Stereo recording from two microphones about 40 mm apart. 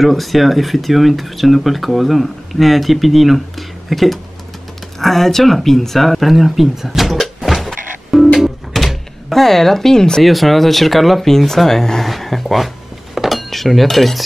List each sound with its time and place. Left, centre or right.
0.0 s speech: centre
10.2 s speech: centre
12.1 s a sound: centre